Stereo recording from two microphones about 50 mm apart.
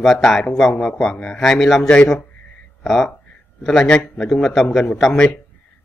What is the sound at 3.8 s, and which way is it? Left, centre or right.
Speech, centre.